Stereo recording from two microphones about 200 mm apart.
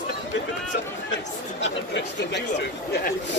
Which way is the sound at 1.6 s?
60° left (ahead or behind).